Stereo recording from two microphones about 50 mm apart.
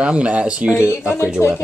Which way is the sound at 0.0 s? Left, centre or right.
Right.